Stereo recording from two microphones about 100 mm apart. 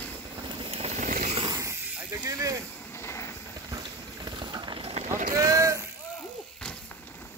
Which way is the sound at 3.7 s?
45° right (ahead or behind).